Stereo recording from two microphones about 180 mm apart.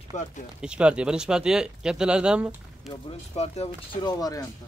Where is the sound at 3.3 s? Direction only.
35° left (ahead or behind).